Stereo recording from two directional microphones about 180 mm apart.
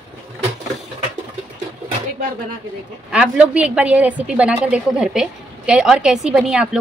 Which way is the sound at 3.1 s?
5° right (ahead or behind).